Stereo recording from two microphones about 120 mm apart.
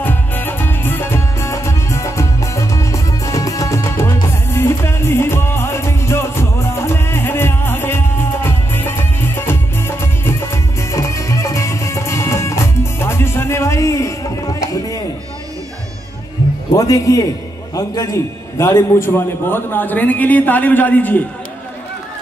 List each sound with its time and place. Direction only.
0.0 s music: 15° left (ahead or behind)
16.7 s a man's voice: 30° left (ahead or behind); by 21.2 s 15° left (ahead or behind)